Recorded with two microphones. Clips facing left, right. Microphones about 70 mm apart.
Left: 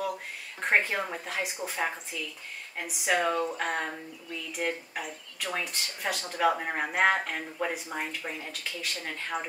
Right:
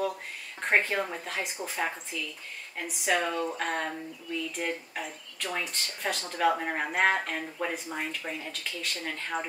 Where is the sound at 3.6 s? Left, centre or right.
Centre.